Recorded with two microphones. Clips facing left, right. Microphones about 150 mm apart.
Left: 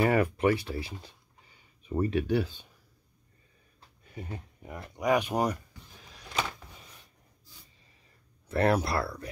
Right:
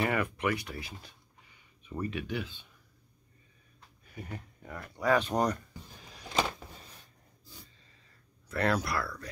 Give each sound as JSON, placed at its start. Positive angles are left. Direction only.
{"t": 0.0, "sound": "speech", "side_deg": 30}
{"t": 4.0, "sound": "speech", "side_deg": 25}
{"t": 5.0, "sound": "speech", "side_deg": 15}
{"t": 8.5, "sound": "speech", "side_deg": 25}